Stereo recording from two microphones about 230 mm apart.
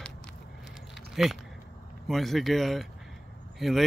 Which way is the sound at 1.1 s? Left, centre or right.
Centre.